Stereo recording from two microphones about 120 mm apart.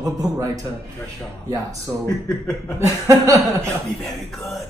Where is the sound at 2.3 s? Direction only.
5° left (ahead or behind).